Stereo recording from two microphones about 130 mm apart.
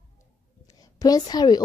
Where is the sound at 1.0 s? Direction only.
30° left (ahead or behind).